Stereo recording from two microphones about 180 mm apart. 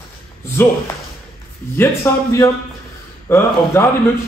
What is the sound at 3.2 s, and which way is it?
Speech, 15° left (ahead or behind).